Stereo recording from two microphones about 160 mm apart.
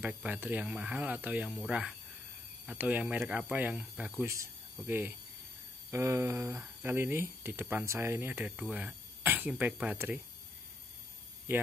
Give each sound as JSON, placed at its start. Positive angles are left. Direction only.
{"t": 0.0, "sound": "speech", "side_deg": -10}
{"t": 11.5, "sound": "speech", "side_deg": -15}